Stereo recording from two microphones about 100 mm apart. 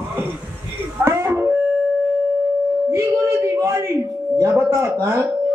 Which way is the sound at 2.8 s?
25° right (ahead or behind).